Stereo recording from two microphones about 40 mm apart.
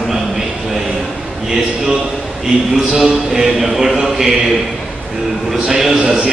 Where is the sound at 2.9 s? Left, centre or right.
Centre.